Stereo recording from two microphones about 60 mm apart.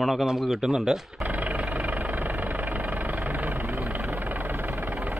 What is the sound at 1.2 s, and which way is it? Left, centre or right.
Vehicle, right.